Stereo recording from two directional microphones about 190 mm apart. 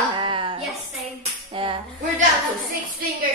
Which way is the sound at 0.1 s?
25° right (ahead or behind).